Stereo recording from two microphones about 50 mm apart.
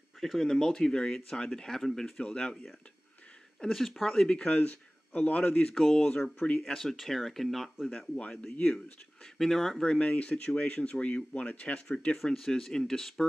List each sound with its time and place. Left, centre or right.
0.2 s speech: centre
2.2 s speech: centre
3.6 s speech: centre
4.1 s speech: centre
4.5 s speech: left
5.8 s speech: centre
6.6 s speech: centre
7.9 s speech: left
9.4 s speech: centre
9.8 s speech: left
12.3 s speech: centre